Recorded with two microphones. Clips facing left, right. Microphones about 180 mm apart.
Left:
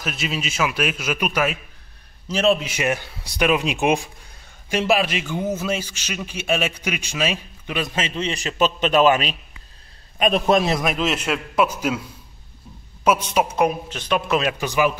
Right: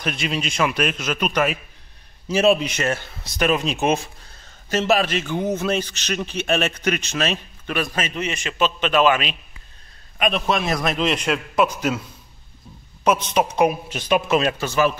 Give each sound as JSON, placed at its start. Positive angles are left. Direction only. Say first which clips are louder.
{"t": 0.0, "sound": "a man's voice", "louder": "right 2 dB", "side_deg": 5}
{"t": 2.2, "sound": "a woman's voice", "louder": "right 2 dB", "side_deg": -10}
{"t": 2.6, "sound": "a man's voice", "louder": "even", "side_deg": 10}
{"t": 10.8, "sound": "speech", "louder": "right 1 dB", "side_deg": 5}
{"t": 13.0, "sound": "speech", "louder": "even", "side_deg": 5}
{"t": 13.7, "sound": "a woman's voice", "louder": "right 2 dB", "side_deg": -10}
{"t": 14.6, "sound": "speech", "louder": "even", "side_deg": 15}